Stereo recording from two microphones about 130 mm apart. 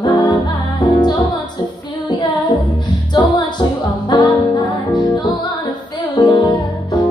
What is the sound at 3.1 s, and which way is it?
Music, 35° left (ahead or behind).